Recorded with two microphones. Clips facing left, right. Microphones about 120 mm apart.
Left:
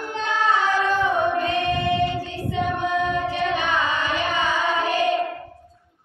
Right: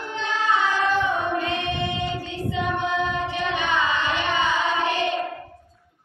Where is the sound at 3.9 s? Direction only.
40° left (ahead or behind).